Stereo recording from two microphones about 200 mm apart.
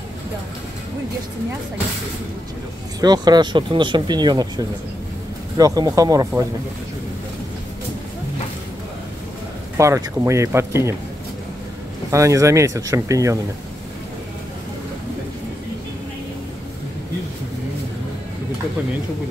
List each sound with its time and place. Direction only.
3.0 s speech: 20° right (ahead or behind)
9.8 s speech: 15° right (ahead or behind)
12.1 s speech: 15° right (ahead or behind)